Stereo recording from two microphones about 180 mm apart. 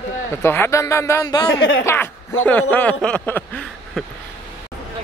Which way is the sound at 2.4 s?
10° left (ahead or behind).